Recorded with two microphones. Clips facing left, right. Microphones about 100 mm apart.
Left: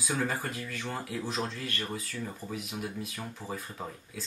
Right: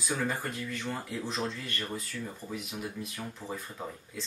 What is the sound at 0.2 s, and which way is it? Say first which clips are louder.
Speech: even; 5° left (ahead or behind).